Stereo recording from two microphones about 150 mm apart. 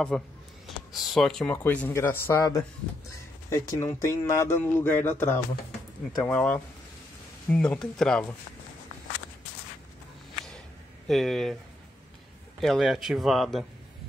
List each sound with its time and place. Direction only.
0.1 s a man's voice: 5° left (ahead or behind)
11.1 s a man's voice: centre (ahead or behind)
12.5 s a man's voice: centre (ahead or behind)